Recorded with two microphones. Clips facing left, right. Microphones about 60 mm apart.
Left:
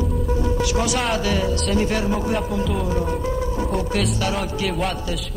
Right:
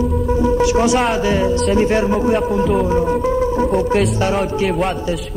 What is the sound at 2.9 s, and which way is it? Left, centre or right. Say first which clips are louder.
Music: right 7 dB; right.